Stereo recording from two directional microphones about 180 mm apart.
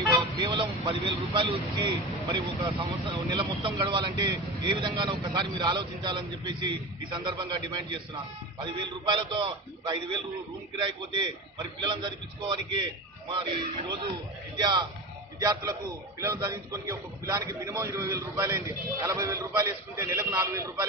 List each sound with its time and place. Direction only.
0.4 s speech: 25° right (ahead or behind)
11.5 s a man's voice: 25° right (ahead or behind)